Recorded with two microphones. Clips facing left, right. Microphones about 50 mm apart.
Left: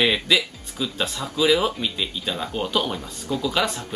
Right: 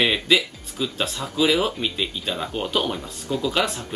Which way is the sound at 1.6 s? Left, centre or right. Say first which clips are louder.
Even; centre.